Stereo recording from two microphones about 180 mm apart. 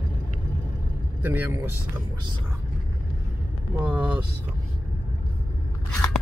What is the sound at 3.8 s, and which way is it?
Vehicle, 5° right (ahead or behind).